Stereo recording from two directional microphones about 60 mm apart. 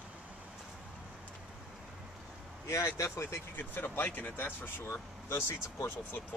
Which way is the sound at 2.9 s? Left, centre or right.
Left.